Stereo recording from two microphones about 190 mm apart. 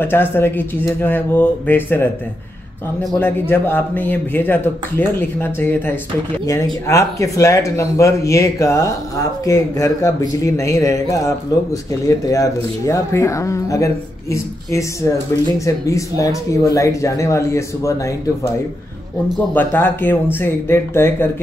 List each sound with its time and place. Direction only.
0.0 s a man's voice: 10° left (ahead or behind)
19.5 s speech: 10° left (ahead or behind)